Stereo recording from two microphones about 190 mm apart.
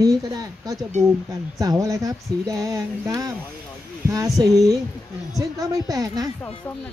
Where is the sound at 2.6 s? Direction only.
15° right (ahead or behind).